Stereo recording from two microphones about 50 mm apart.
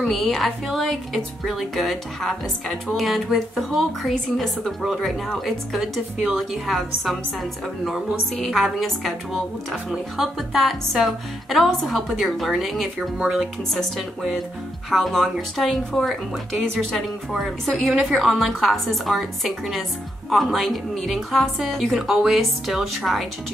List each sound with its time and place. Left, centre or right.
0.0 s a woman's voice: centre
8.4 s a woman's voice: centre
13.2 s speech: centre
14.9 s a woman's voice: centre